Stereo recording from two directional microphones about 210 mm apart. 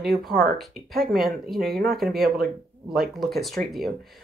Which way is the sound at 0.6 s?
Centre (ahead or behind).